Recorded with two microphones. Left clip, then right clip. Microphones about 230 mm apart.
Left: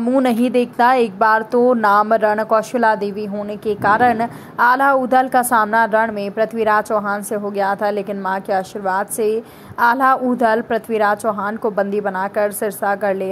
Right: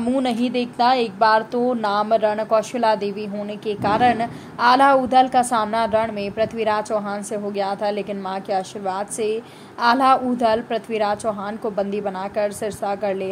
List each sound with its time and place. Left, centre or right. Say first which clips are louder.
0.0 s speech: left 5 dB; left